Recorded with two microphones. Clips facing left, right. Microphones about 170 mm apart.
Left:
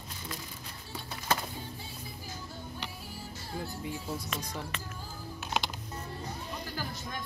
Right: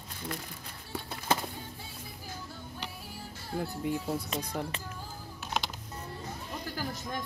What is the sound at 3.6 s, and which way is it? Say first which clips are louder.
Speech: right 7 dB; 60° right (ahead or behind).